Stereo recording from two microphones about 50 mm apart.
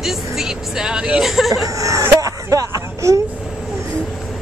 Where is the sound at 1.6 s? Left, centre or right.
Right.